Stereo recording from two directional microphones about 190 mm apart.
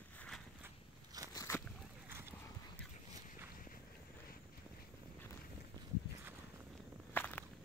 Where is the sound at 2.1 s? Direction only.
10° right (ahead or behind).